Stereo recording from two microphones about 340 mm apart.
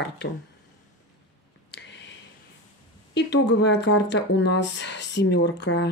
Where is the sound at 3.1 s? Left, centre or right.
Left.